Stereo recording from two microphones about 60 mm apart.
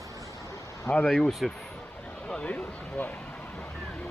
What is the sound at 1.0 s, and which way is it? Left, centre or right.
Speech, centre.